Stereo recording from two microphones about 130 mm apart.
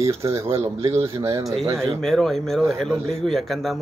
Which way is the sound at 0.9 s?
45° right (ahead or behind).